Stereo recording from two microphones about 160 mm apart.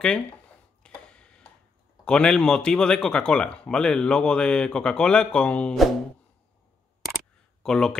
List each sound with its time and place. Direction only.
0.8 s tick-tock: 5° left (ahead or behind)
2.0 s speech: 5° left (ahead or behind)
7.6 s speech: 5° left (ahead or behind)